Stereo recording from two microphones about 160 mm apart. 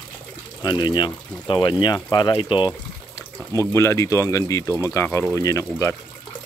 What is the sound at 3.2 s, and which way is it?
Speech, 20° left (ahead or behind).